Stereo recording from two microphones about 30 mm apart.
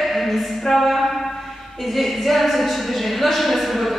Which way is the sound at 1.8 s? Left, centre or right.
Centre.